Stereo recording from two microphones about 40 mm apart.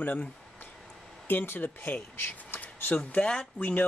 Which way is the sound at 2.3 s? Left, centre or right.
Left.